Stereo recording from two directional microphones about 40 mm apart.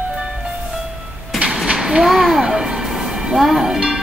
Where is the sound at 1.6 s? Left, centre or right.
Centre.